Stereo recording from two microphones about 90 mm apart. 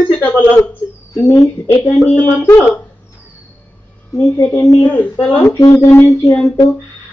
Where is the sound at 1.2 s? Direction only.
40° left (ahead or behind).